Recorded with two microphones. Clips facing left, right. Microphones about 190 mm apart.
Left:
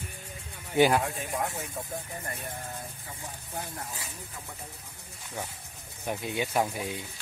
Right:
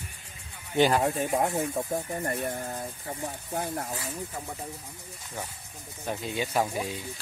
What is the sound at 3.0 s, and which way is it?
Speech, 55° right (ahead or behind).